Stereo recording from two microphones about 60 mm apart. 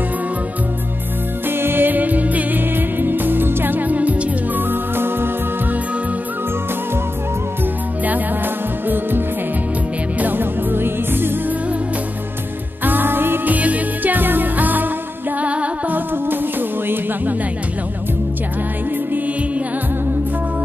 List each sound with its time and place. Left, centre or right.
1.5 s music: right
8.8 s music: right
12.8 s music: right
16.3 s music: right